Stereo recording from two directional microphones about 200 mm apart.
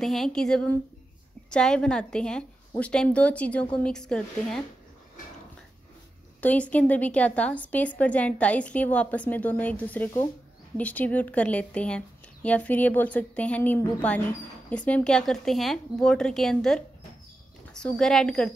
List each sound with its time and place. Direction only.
0.0 s a woman's voice: centre (ahead or behind)
6.4 s a woman's voice: 5° left (ahead or behind)